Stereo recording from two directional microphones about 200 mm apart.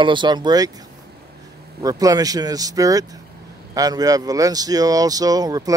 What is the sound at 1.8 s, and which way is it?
Speech, 15° right (ahead or behind).